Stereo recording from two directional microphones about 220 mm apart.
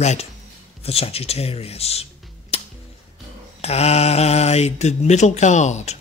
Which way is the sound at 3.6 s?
30° left (ahead or behind).